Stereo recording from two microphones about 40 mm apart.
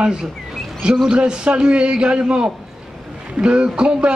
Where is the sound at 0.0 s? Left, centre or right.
Centre.